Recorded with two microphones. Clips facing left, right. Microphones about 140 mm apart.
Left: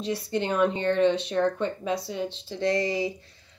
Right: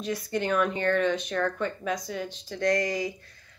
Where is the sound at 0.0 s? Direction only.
25° left (ahead or behind).